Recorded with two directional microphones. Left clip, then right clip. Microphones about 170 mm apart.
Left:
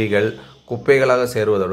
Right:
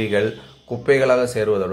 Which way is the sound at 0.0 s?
15° left (ahead or behind).